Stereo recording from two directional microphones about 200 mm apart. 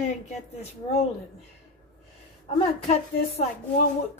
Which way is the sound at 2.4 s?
30° left (ahead or behind).